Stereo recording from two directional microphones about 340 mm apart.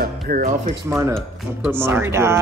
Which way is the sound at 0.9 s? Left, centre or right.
Centre.